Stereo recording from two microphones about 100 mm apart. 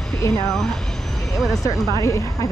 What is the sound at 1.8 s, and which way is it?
Speech, 30° left (ahead or behind).